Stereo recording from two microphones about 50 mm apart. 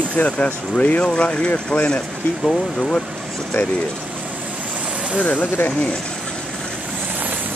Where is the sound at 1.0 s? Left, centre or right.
Centre.